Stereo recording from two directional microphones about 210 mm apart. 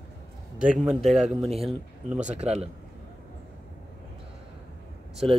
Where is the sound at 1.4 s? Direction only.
30° right (ahead or behind).